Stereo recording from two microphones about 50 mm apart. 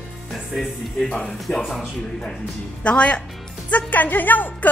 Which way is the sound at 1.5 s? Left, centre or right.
Left.